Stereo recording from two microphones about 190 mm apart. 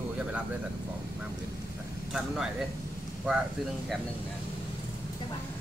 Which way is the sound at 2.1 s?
Centre (ahead or behind).